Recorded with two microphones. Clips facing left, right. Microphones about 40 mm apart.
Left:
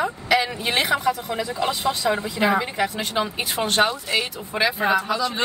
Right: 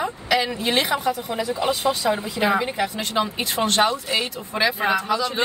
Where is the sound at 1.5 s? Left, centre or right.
Centre.